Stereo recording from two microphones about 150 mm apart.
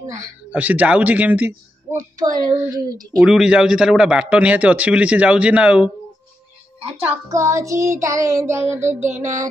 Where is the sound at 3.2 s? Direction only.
5° right (ahead or behind).